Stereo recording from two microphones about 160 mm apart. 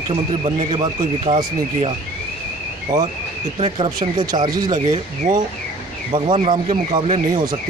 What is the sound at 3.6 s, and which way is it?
Speech, 30° right (ahead or behind).